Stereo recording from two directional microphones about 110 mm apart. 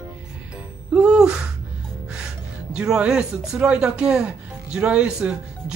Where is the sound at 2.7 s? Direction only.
10° right (ahead or behind).